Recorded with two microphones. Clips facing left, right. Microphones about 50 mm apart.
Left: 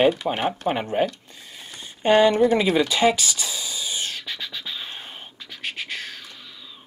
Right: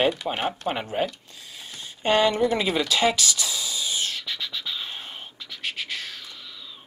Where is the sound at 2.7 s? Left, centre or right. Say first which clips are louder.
Left 3 dB; centre.